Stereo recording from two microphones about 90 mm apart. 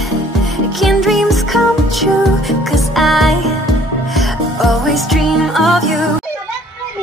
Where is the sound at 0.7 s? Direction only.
Centre (ahead or behind).